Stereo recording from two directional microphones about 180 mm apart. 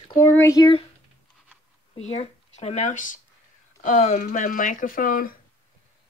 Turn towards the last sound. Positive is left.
turn(degrees=50)  # may be behind; listen again after turning